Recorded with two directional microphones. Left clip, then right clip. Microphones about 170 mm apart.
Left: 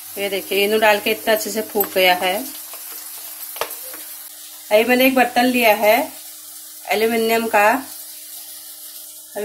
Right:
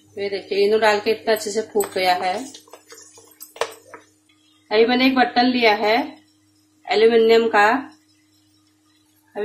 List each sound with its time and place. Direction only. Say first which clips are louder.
0.2 s speech: left 1 dB; 20° left (ahead or behind)
4.8 s speech: left 2 dB; 20° left (ahead or behind)